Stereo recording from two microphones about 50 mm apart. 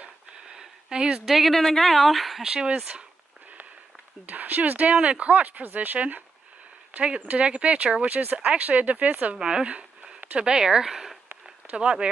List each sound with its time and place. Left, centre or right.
0.6 s a sound: centre
1.2 s a woman's voice: centre
2.4 s speech: centre
4.3 s speech: right
9.4 s speech: centre
10.5 s speech: centre
11.4 s a sound: centre